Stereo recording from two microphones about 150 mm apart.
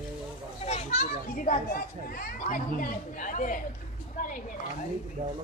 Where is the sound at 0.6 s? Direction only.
50° left (ahead or behind).